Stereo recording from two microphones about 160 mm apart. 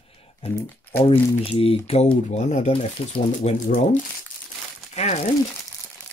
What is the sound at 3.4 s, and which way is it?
Speech, 55° left (ahead or behind).